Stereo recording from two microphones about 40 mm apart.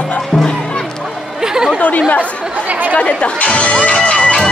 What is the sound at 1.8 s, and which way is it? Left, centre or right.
Chatter, left.